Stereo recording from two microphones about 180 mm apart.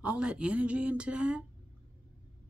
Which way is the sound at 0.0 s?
5° right (ahead or behind).